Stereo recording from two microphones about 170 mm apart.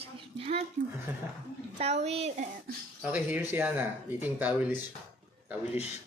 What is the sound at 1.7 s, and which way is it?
Speech, 40° right (ahead or behind).